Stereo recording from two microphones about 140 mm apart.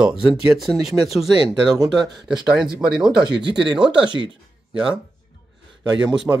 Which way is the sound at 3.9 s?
35° right (ahead or behind).